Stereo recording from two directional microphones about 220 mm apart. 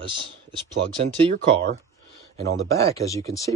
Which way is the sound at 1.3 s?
40° right (ahead or behind).